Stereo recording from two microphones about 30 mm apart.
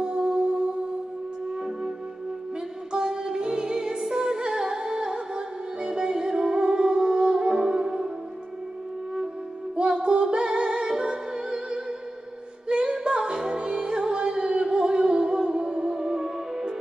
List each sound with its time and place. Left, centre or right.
0.0 s music: right
2.9 s music: right
9.9 s music: right